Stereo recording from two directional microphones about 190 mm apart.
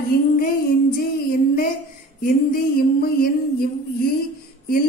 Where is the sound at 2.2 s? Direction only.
50° left (ahead or behind).